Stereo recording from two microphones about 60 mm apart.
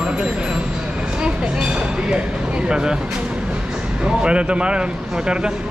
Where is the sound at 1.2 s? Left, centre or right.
Centre.